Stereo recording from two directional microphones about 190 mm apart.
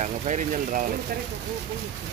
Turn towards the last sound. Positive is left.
turn(degrees=-40)  # may be behind; listen again after turning